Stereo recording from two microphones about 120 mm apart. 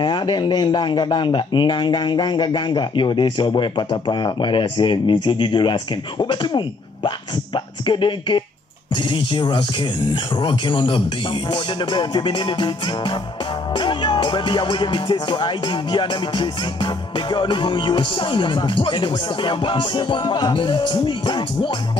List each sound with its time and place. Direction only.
0.0 s speech: 40° left (ahead or behind)
7.5 s music: 45° left (ahead or behind)
13.7 s speech: 40° left (ahead or behind)